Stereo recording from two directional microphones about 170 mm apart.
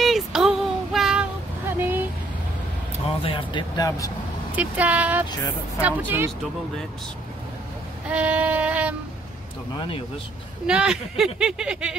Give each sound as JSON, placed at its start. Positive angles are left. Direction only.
{"t": 0.0, "sound": "child singing", "side_deg": 0}
{"t": 1.7, "sound": "vehicle", "side_deg": -10}
{"t": 3.2, "sound": "speech", "side_deg": 30}
{"t": 4.6, "sound": "speech", "side_deg": -10}
{"t": 8.1, "sound": "music", "side_deg": -10}
{"t": 9.8, "sound": "speech", "side_deg": 30}
{"t": 10.7, "sound": "a sound", "side_deg": -5}